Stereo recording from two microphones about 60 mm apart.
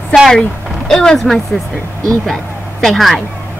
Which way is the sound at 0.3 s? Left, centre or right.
Centre.